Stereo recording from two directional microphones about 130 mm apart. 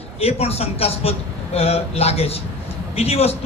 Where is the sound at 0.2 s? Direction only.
50° left (ahead or behind).